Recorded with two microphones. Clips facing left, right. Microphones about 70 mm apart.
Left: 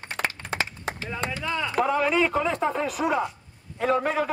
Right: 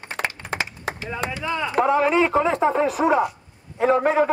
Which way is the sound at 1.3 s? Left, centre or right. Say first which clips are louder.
Right 3 dB; centre.